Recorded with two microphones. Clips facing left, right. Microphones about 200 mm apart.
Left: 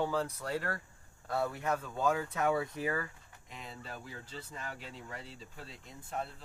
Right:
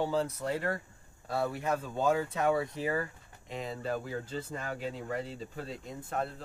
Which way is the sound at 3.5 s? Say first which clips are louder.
Right 11 dB; 35° right (ahead or behind).